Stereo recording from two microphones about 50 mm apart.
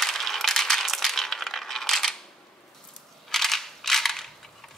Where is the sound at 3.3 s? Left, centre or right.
Centre.